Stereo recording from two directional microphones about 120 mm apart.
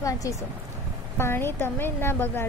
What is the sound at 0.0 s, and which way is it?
A woman's voice, 25° left (ahead or behind).